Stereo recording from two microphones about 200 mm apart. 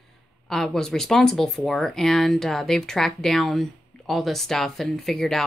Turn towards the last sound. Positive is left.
turn(degrees=0)  # may be behind; listen again after turning